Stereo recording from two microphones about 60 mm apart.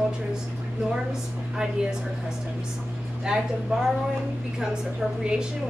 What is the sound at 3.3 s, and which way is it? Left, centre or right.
Speech, centre.